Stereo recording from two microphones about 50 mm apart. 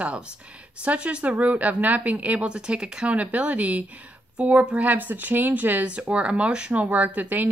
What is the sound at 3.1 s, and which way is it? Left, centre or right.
A woman's voice, right.